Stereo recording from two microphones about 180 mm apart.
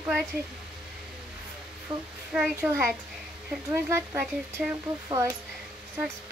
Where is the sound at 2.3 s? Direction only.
10° right (ahead or behind).